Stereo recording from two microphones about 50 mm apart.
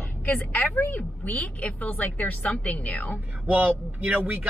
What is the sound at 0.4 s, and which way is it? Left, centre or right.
A woman's voice, left.